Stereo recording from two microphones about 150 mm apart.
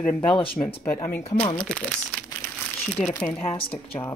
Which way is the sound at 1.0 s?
10° left (ahead or behind).